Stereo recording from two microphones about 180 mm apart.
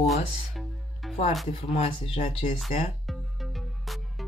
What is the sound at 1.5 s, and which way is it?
Speech, 30° left (ahead or behind).